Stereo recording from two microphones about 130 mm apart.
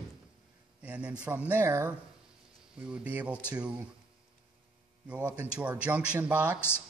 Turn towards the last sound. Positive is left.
turn(degrees=-10)  # may be behind; listen again after turning